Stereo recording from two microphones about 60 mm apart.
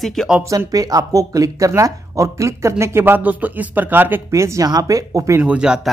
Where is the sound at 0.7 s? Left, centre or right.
Right.